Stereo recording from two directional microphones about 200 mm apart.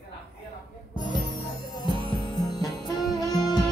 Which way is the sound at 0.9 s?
20° left (ahead or behind).